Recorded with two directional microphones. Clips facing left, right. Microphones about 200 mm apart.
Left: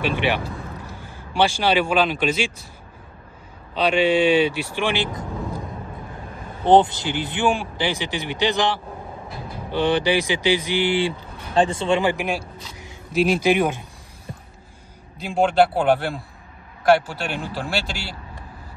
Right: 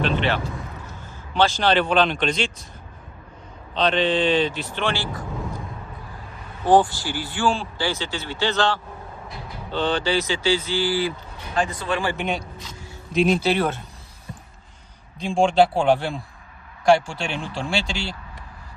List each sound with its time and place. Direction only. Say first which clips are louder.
0.0 s speech: even; 10° left (ahead or behind)
3.7 s speech: left 2 dB; 10° left (ahead or behind)
6.6 s speech: left 2 dB; 20° left (ahead or behind)
12.3 s speech: left 1 dB; 5° left (ahead or behind)
15.1 s speech: even; 5° left (ahead or behind)